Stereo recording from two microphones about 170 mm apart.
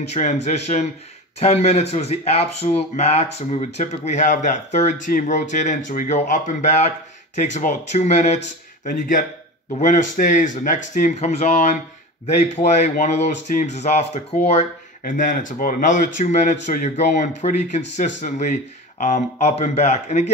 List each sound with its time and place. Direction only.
0.1 s speech: 45° left (ahead or behind)
15.0 s speech: 50° left (ahead or behind)